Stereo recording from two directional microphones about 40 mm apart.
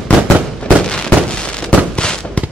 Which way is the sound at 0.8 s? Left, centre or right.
Centre.